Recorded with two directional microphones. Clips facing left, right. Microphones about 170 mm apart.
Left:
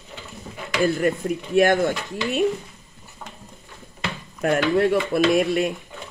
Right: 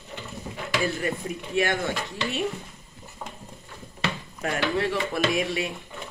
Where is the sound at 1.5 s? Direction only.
40° left (ahead or behind).